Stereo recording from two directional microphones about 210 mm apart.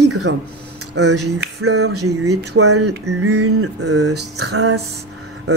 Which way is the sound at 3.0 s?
90° right.